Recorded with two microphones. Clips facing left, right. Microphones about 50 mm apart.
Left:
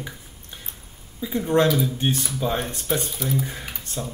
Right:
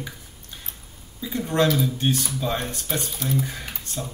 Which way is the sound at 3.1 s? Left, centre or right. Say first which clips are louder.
Even; centre.